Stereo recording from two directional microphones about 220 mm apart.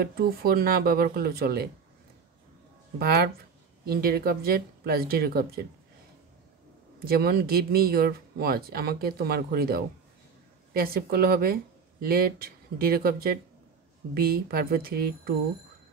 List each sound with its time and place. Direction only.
0.0 s speech: 45° right (ahead or behind)
3.0 s speech: 45° right (ahead or behind)
7.1 s speech: 45° right (ahead or behind)